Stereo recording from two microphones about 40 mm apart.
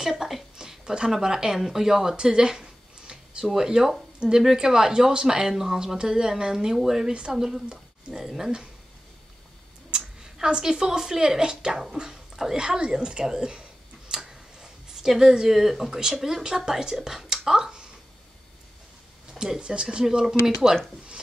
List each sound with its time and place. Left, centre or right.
0.0 s speech: centre
10.2 s speech: centre
19.3 s speech: centre